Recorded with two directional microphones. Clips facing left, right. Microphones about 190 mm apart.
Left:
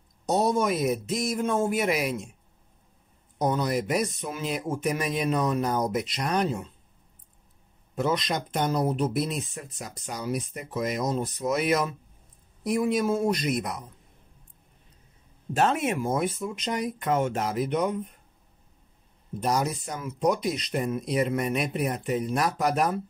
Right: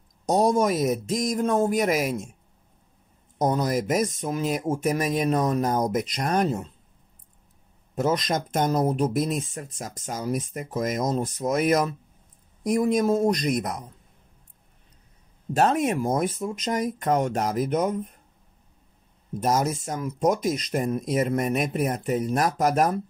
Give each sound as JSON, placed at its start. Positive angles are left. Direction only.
{"t": 0.3, "sound": "speech", "side_deg": -45}
{"t": 3.3, "sound": "speech", "side_deg": -45}
{"t": 7.9, "sound": "speech", "side_deg": -45}
{"t": 15.5, "sound": "speech", "side_deg": -40}
{"t": 19.4, "sound": "speech", "side_deg": -45}